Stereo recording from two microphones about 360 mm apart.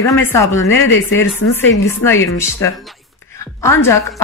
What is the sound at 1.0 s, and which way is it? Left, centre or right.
Speech, left.